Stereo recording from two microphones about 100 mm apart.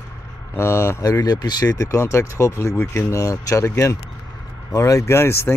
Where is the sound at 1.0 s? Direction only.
40° left (ahead or behind).